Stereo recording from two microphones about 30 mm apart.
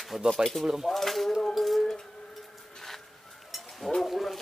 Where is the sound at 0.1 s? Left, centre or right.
Centre.